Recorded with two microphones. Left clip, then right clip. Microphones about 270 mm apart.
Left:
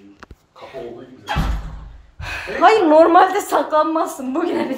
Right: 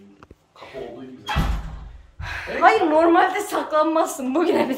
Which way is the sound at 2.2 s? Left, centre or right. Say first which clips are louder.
Left 3 dB; left.